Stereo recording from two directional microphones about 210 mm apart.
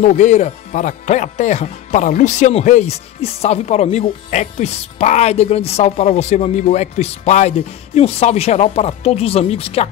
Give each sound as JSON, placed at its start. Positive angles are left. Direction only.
{"t": 0.0, "sound": "speech", "side_deg": 35}